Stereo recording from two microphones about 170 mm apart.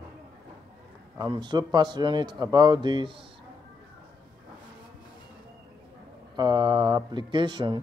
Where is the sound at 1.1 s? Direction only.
25° right (ahead or behind).